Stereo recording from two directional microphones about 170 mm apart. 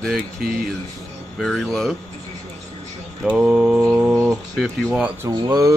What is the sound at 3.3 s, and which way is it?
Mantra, 5° right (ahead or behind).